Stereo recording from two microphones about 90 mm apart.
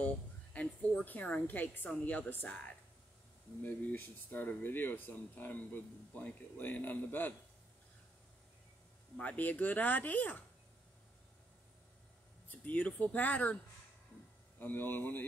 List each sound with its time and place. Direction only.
0.0 s a sound: 15° left (ahead or behind)
1.9 s speech: 15° left (ahead or behind)
9.1 s speech: 15° left (ahead or behind)
12.4 s speech: 20° left (ahead or behind)
14.6 s speech: 25° left (ahead or behind)